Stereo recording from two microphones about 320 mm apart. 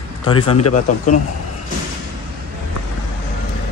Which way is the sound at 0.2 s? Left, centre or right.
Centre.